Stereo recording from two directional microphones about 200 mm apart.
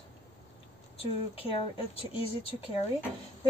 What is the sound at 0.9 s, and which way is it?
Speech, 30° left (ahead or behind).